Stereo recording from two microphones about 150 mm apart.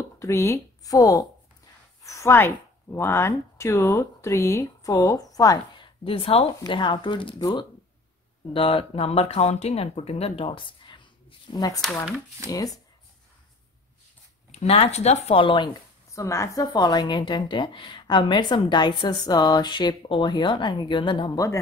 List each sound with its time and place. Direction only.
0.2 s speech: 20° left (ahead or behind)
6.0 s speech: 40° left (ahead or behind)
11.8 s speech: centre (ahead or behind)
12.4 s a woman's voice: 25° left (ahead or behind)
14.5 s speech: 45° left (ahead or behind)
16.1 s a woman's voice: 20° left (ahead or behind)